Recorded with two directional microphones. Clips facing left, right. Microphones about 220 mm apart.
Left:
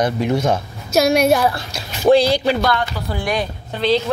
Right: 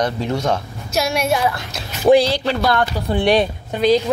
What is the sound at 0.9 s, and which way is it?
Speech, 40° left (ahead or behind).